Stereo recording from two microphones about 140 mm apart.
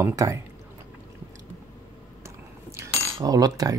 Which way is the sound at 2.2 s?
20° right (ahead or behind).